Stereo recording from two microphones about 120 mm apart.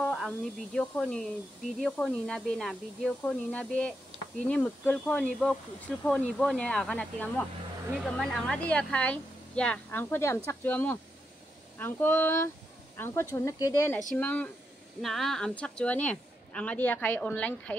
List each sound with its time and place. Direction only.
0.0 s a sound: 5° left (ahead or behind)
0.7 s a woman's voice: 10° left (ahead or behind); by 13.9 s 25° left (ahead or behind)
14.1 s a woman's voice: 10° left (ahead or behind)
15.0 s a woman's voice: centre (ahead or behind)